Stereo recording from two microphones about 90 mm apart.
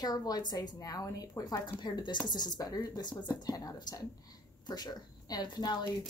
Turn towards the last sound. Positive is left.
turn(degrees=50)  # may be behind; listen again after turning